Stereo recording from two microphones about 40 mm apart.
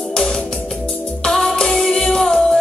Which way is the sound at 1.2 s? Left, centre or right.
Centre.